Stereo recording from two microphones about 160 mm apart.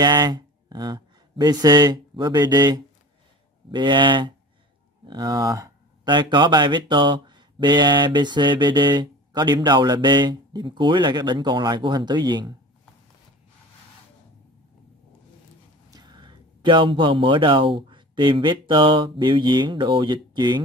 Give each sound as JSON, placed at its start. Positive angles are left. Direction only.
{"t": 0.0, "sound": "speech", "side_deg": -25}
{"t": 3.7, "sound": "speech", "side_deg": -30}
{"t": 15.9, "sound": "speech", "side_deg": -25}